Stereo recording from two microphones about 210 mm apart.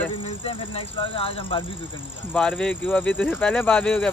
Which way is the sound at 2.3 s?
5° left (ahead or behind).